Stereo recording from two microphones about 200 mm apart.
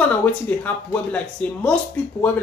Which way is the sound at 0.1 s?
10° left (ahead or behind).